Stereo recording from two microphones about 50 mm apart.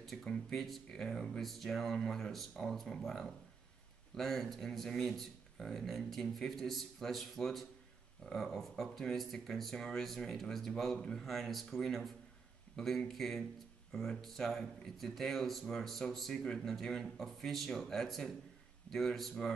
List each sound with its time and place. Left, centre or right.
0.2 s speech: centre
11.2 s speech: centre